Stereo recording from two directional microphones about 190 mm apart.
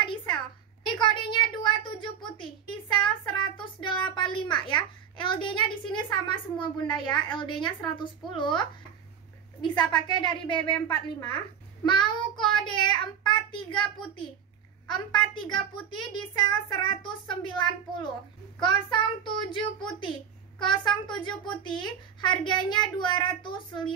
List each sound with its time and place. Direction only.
0.8 s a sound: 25° left (ahead or behind)
6.1 s a child's voice: 25° left (ahead or behind)
18.6 s a child's voice: 25° left (ahead or behind)